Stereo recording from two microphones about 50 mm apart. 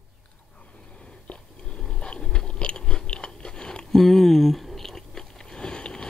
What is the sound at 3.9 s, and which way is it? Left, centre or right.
Biting, centre.